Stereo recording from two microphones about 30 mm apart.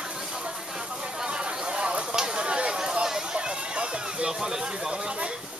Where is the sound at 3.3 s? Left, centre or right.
Right.